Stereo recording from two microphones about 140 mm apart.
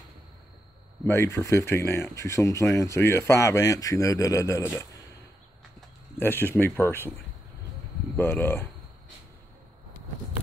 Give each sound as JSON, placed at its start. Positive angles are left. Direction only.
{"t": 1.0, "sound": "speech", "side_deg": 20}
{"t": 6.1, "sound": "speech", "side_deg": 15}
{"t": 8.2, "sound": "speech", "side_deg": 15}